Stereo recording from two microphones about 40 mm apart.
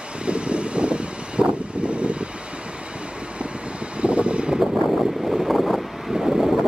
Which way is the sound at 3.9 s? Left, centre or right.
Right.